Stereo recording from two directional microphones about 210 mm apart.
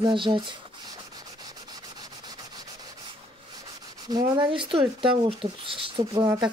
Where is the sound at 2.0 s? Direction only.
20° right (ahead or behind).